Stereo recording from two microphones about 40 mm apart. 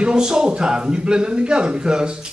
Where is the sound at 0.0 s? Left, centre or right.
Right.